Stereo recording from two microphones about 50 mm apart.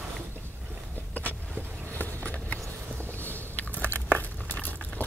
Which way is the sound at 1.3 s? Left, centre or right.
Left.